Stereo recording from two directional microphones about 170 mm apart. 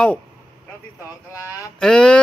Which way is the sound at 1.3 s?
20° left (ahead or behind).